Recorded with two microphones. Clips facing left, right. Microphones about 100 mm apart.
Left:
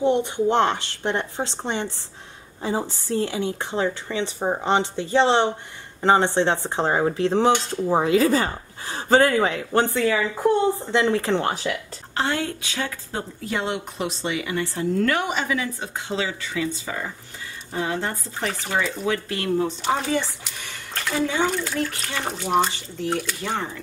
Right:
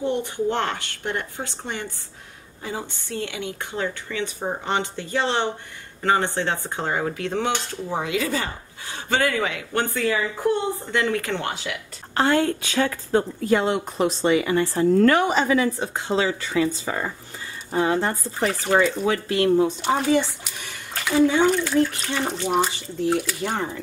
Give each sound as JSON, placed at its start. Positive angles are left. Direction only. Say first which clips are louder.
{"t": 0.0, "sound": "a woman's voice", "louder": "left 4 dB", "side_deg": 20}
{"t": 10.9, "sound": "a woman's voice", "louder": "left 3 dB", "side_deg": 25}
{"t": 12.1, "sound": "speech", "louder": "right 5 dB", "side_deg": -50}
{"t": 19.0, "sound": "speech", "louder": "right 3 dB", "side_deg": -25}
{"t": 19.8, "sound": "speech", "louder": "right 3 dB", "side_deg": 0}
{"t": 20.6, "sound": "a sound", "louder": "right 1 dB", "side_deg": 0}
{"t": 21.5, "sound": "speech", "louder": "right 6 dB", "side_deg": 0}